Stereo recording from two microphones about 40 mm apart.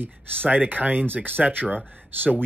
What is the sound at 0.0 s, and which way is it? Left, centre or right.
Speech, right.